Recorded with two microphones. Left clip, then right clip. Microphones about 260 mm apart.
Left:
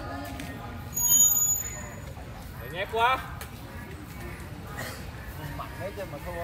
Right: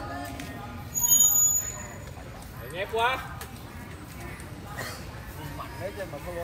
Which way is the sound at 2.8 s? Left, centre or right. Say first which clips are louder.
Left 2 dB; left.